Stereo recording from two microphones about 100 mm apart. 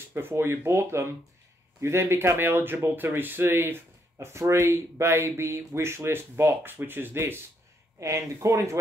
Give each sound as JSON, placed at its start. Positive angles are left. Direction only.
{"t": 0.1, "sound": "speech", "side_deg": -20}